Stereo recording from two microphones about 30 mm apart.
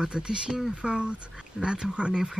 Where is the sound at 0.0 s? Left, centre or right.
Right.